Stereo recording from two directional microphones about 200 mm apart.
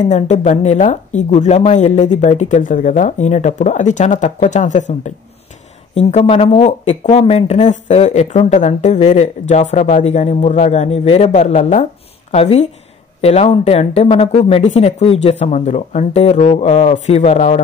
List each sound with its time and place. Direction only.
0.0 s speech: 35° left (ahead or behind)